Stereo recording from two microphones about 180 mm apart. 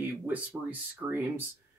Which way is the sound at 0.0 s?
10° right (ahead or behind).